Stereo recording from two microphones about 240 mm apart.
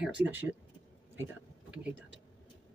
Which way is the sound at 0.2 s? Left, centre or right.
Right.